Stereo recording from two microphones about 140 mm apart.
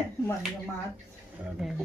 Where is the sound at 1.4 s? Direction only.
10° right (ahead or behind).